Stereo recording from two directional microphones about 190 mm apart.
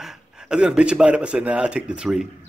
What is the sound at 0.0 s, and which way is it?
Speech, 5° right (ahead or behind).